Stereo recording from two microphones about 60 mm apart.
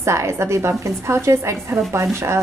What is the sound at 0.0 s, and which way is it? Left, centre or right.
A woman's voice, right.